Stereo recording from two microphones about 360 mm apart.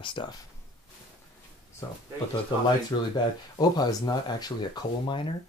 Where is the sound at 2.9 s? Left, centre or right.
Centre.